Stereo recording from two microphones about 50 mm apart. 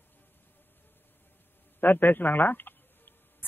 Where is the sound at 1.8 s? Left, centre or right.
Left.